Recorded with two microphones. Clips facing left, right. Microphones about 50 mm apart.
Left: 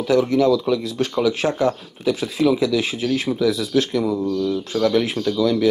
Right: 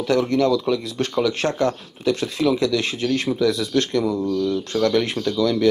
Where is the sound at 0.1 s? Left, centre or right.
Centre.